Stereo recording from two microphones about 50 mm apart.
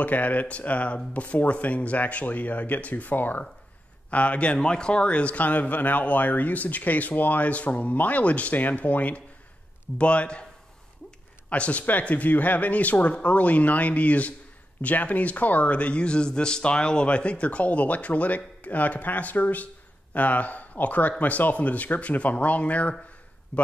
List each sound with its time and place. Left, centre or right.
0.0 s a man's voice: left
11.4 s a man's voice: left